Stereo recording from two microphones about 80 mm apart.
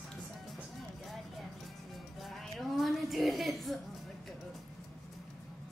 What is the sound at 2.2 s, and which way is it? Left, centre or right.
A woman's voice, centre.